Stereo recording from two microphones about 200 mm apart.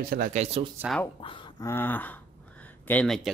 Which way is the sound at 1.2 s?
25° left (ahead or behind).